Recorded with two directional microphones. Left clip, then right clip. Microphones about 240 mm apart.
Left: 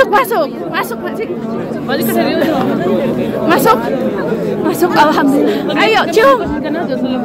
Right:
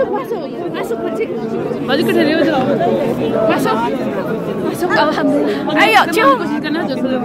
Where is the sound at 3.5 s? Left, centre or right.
Left.